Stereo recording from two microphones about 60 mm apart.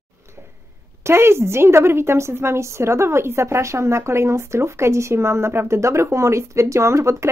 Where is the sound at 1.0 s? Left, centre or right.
Right.